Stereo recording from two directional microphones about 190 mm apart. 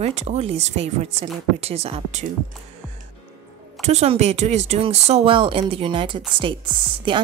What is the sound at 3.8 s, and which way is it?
A woman's voice, 35° right (ahead or behind).